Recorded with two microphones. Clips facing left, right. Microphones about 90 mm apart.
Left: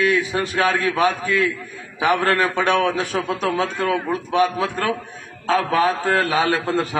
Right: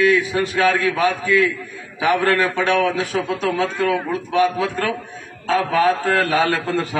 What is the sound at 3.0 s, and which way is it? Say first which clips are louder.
Speech: right 1 dB; 45° left (ahead or behind).